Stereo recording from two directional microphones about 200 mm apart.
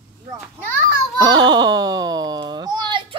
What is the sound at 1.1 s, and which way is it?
A child's voice, 20° right (ahead or behind).